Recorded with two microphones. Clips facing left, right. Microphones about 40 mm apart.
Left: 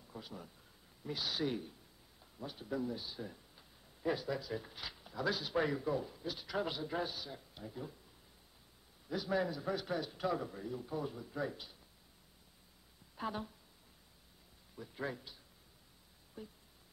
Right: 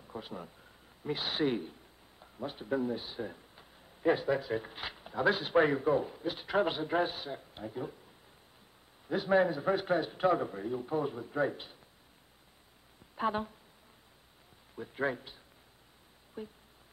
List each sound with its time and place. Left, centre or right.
0.0 s a man's voice: right
9.0 s a man's voice: right
13.1 s a woman's voice: right
14.8 s a man's voice: right
16.4 s a sound: right